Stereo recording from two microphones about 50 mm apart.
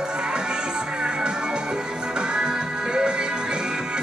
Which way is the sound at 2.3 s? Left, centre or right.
Centre.